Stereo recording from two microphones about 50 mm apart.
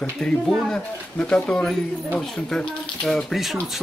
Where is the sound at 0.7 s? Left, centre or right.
Centre.